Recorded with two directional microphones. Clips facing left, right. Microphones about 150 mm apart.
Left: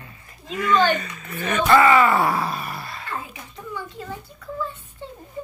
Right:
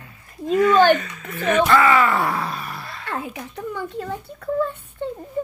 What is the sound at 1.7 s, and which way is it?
Speech, 5° left (ahead or behind).